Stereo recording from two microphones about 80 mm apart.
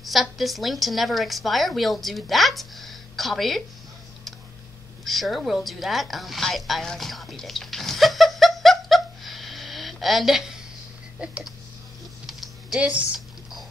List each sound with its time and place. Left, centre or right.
0.0 s a woman's voice: centre
5.0 s a sound: centre
12.3 s typing: centre
12.9 s speech: centre